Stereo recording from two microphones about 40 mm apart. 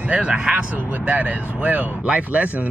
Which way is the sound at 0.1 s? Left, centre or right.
Right.